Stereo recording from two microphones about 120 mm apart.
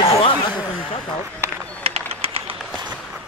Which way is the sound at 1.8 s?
55° right (ahead or behind).